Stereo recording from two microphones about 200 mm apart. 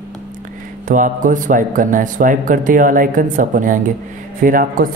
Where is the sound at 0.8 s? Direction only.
40° right (ahead or behind).